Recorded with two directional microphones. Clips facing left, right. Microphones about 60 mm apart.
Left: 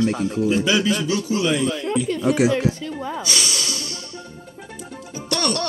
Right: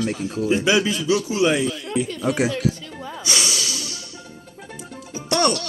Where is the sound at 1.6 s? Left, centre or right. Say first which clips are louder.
Left 4 dB; left.